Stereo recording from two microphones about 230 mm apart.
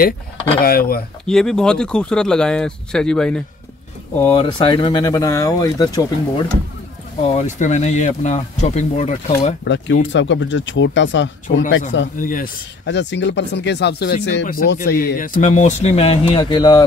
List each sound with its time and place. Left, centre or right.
0.6 s speech: left
1.2 s speech: centre
4.2 s speech: left
7.2 s speech: left
10.0 s speech: left
12.2 s speech: left
12.8 s speech: left; by 16.8 s centre